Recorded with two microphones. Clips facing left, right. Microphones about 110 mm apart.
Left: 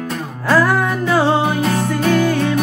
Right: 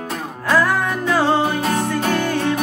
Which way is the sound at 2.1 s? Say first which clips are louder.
Left 8 dB; centre (ahead or behind).